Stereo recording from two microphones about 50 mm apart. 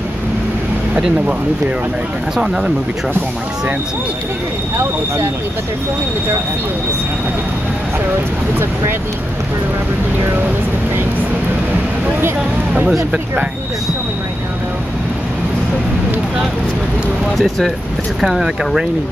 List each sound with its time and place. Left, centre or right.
2.3 s speech: centre
4.7 s speech: right
17.4 s speech: centre